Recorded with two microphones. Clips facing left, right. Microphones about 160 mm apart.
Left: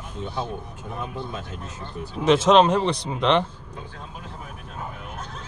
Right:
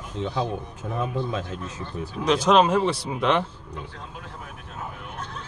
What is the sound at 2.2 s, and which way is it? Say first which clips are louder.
Speech: left 4 dB; 20° left (ahead or behind).